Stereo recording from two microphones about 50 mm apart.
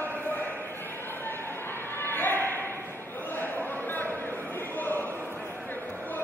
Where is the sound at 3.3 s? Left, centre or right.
Left.